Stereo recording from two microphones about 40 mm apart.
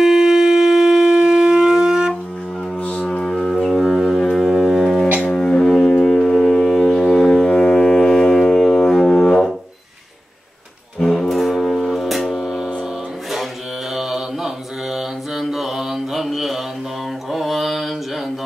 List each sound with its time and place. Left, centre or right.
0.0 s shofar: centre
2.8 s music: left
3.1 s music: centre
4.4 s foghorn: centre
5.3 s music: centre
11.0 s music: centre
11.9 s a sound: centre
13.9 s mantra: centre